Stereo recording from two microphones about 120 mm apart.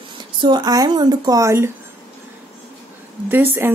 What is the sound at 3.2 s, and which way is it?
Speech, 15° right (ahead or behind).